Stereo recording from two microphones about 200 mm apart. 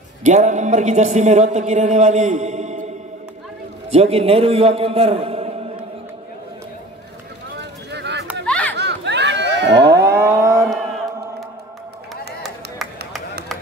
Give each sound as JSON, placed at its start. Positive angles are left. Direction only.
{"t": 0.2, "sound": "a man's voice", "side_deg": -35}
{"t": 3.9, "sound": "a man's voice", "side_deg": -30}
{"t": 7.5, "sound": "a sound", "side_deg": -60}
{"t": 8.5, "sound": "chatter", "side_deg": 5}
{"t": 8.7, "sound": "a sound", "side_deg": -60}
{"t": 9.9, "sound": "cattle", "side_deg": -15}